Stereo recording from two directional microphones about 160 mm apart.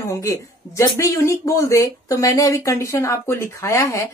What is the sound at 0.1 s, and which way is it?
Speech, 20° left (ahead or behind).